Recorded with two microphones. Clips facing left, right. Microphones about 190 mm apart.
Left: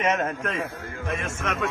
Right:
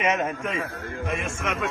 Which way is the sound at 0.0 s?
10° right (ahead or behind).